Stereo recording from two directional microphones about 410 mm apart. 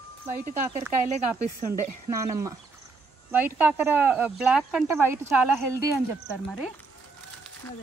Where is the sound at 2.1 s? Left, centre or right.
Centre.